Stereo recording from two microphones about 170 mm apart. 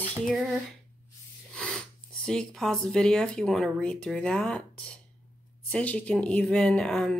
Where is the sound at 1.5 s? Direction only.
5° left (ahead or behind).